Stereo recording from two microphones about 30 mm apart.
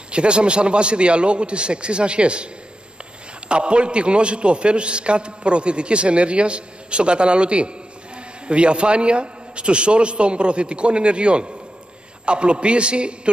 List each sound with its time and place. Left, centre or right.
0.1 s a man's voice: right